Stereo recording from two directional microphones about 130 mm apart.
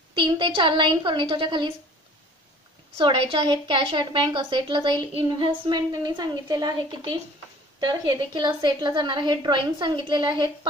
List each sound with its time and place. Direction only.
0.1 s a woman's voice: 40° right (ahead or behind)
3.0 s a woman's voice: 45° right (ahead or behind)